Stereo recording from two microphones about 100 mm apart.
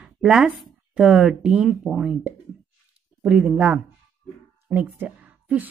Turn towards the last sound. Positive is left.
turn(degrees=-15)  # may be behind; listen again after turning